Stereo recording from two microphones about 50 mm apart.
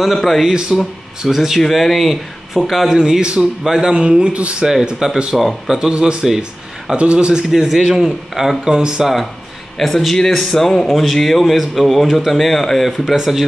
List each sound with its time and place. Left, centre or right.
0.4 s a man's voice: centre
3.6 s a man's voice: centre
3.9 s speech: centre
4.8 s a man's voice: centre
5.9 s speech: centre
7.4 s speech: centre
9.8 s a man's voice: centre